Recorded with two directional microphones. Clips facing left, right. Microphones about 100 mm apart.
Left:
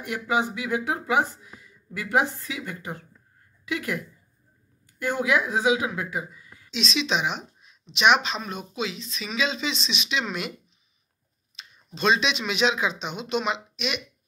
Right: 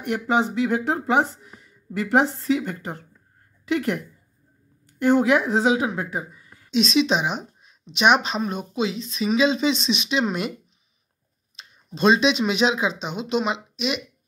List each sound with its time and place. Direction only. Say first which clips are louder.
0.3 s speech: right 4 dB; 35° right (ahead or behind)
11.5 s speech: right 4 dB; 35° right (ahead or behind)